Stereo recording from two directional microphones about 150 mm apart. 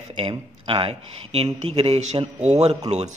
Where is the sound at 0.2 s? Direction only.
40° right (ahead or behind).